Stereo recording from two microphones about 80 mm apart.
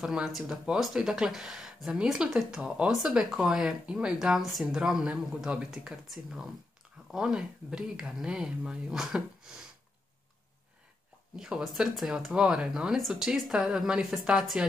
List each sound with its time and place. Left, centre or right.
0.0 s speech: centre
11.3 s speech: centre